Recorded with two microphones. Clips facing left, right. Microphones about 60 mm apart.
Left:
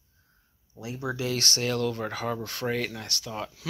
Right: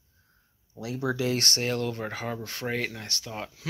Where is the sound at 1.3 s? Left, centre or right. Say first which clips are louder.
Right 1 dB; right.